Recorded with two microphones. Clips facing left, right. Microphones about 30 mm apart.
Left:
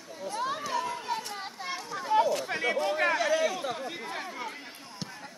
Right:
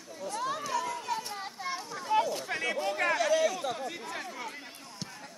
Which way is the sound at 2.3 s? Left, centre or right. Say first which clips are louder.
Left 3 dB; left.